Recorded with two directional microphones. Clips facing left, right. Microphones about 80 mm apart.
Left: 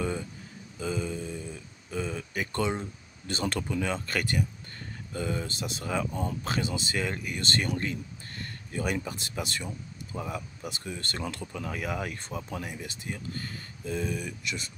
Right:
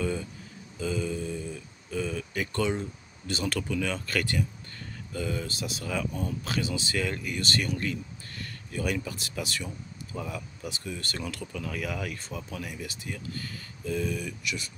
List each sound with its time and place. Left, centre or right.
0.0 s speech: left
0.7 s mantra: left
1.9 s a sound: centre
3.3 s speech: left
3.6 s speech: left
7.0 s speech: centre
7.4 s speech: left
10.1 s speech: centre
13.8 s speech: centre